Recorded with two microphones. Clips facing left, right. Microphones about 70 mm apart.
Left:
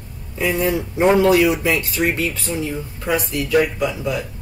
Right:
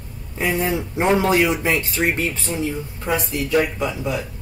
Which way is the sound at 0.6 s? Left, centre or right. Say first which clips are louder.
Left 6 dB; right.